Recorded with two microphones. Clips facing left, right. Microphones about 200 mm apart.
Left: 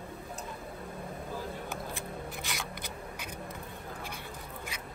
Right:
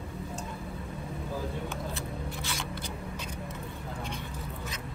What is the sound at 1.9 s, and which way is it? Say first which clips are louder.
Scissors: right 2 dB; 15° left (ahead or behind).